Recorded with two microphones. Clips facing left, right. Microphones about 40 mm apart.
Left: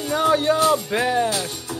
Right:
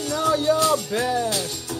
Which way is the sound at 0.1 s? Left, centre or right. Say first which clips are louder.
Left 2 dB; left.